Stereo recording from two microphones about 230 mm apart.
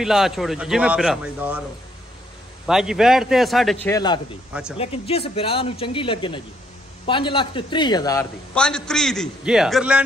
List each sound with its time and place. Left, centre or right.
0.0 s a man's voice: centre
2.6 s a man's voice: centre
8.5 s a man's voice: centre